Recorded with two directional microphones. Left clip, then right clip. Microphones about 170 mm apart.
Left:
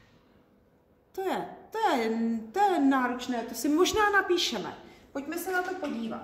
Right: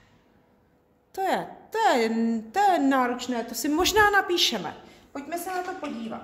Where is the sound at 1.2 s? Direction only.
65° right (ahead or behind).